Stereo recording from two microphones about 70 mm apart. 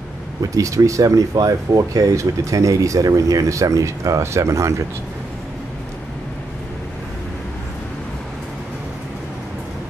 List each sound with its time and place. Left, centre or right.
0.4 s speech: right